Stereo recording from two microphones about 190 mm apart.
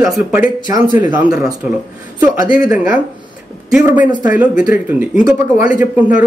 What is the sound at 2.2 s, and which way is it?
Speech, 45° left (ahead or behind).